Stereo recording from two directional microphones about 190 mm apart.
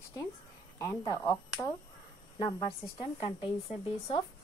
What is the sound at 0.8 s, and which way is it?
A woman's voice, 15° left (ahead or behind).